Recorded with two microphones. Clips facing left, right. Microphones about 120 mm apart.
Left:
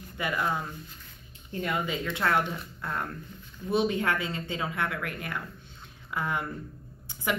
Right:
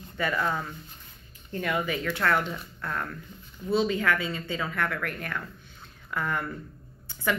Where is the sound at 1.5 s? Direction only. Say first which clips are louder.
Right 2 dB; 25° left (ahead or behind).